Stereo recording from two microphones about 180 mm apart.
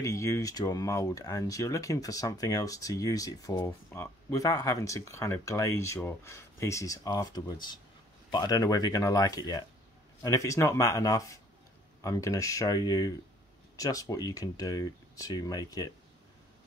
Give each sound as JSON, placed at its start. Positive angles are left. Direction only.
{"t": 0.0, "sound": "speech", "side_deg": 15}